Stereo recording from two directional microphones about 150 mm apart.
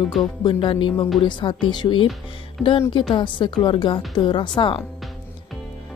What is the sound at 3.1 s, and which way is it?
Speech, 30° left (ahead or behind).